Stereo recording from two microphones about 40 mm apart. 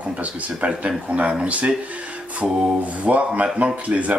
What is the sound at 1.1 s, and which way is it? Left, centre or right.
Speech, right.